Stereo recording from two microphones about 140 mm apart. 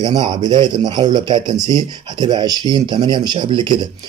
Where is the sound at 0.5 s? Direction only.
30° right (ahead or behind).